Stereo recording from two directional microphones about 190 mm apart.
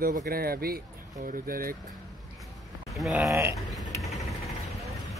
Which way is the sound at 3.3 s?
10° right (ahead or behind).